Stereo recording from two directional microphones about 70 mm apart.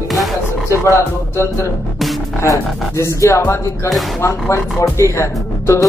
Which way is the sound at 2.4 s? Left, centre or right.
Left.